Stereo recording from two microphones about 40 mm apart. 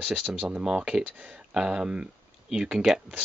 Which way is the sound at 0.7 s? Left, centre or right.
Right.